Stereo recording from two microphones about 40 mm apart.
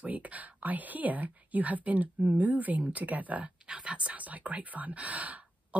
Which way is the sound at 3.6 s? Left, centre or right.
Right.